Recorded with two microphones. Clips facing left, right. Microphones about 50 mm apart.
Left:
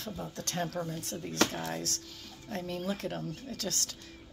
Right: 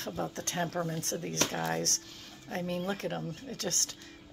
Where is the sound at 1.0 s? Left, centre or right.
Right.